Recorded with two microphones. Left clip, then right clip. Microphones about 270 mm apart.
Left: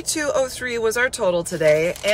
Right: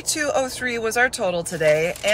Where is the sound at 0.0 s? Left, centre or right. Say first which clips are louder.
Left 1 dB; centre.